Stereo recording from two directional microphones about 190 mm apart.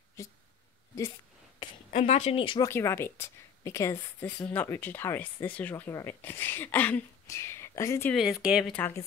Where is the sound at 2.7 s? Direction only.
15° left (ahead or behind).